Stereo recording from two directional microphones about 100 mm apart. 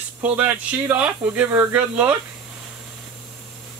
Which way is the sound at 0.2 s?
15° right (ahead or behind).